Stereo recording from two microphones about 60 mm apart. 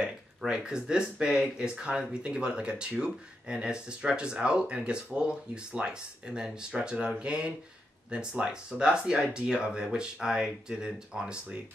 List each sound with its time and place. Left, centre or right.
0.0 s speech: centre